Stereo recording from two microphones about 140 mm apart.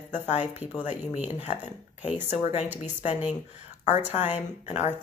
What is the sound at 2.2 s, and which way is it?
Speech, 55° left (ahead or behind).